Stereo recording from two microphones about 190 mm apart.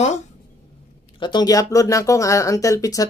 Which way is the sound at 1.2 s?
25° left (ahead or behind).